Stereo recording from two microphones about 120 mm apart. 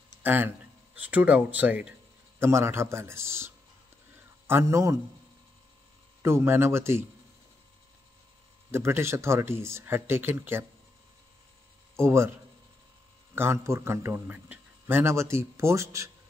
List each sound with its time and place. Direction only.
0.2 s a man's voice: 15° right (ahead or behind)
6.2 s a man's voice: 20° right (ahead or behind)
8.7 s a man's voice: 20° right (ahead or behind)
12.0 s a man's voice: 20° right (ahead or behind)
13.3 s a man's voice: 20° right (ahead or behind)